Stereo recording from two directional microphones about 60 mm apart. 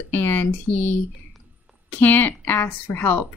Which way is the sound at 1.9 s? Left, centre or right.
Left.